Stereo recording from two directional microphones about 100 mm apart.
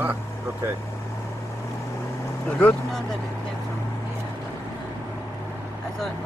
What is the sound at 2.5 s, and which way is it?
Speech, 10° left (ahead or behind).